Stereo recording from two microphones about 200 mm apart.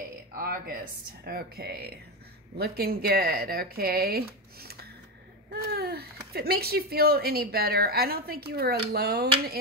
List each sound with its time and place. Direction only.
0.3 s speech: 45° right (ahead or behind)